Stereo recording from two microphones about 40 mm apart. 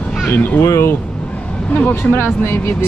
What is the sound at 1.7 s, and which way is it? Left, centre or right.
Speech, left.